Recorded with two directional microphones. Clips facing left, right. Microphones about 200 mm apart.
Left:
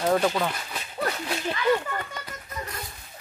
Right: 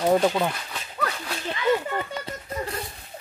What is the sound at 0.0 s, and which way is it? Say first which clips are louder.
Speech: right 3 dB; 15° right (ahead or behind).